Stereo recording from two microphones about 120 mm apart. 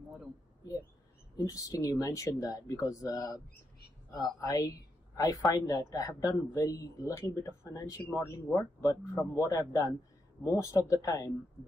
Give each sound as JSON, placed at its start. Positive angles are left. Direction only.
{"t": 1.3, "sound": "speech", "side_deg": 30}